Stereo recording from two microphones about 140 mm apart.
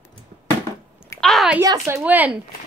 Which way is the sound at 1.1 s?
Centre (ahead or behind).